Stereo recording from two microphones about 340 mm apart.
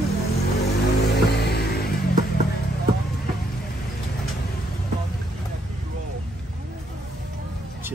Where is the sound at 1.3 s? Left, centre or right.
Left.